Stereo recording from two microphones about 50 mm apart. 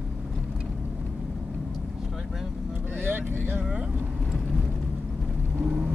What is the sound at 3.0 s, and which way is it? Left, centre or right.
Vehicle, right.